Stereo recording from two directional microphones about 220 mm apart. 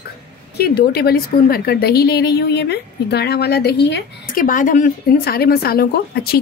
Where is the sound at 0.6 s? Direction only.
45° left (ahead or behind).